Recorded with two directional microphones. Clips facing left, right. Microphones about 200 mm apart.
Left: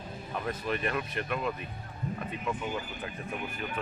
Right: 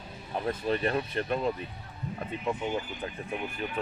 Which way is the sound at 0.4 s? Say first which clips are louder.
Right 4 dB; 35° right (ahead or behind).